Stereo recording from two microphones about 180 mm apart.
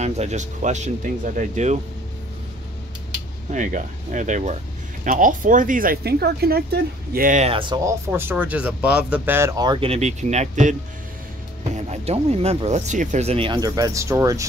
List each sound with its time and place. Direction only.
0.0 s speech: 40° right (ahead or behind)
3.5 s speech: 45° right (ahead or behind)
7.5 s speech: 25° right (ahead or behind)